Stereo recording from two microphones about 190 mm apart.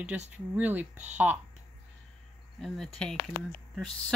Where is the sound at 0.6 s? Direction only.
10° right (ahead or behind).